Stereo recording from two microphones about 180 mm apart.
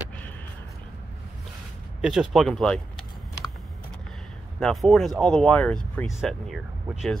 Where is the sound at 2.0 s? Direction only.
5° right (ahead or behind).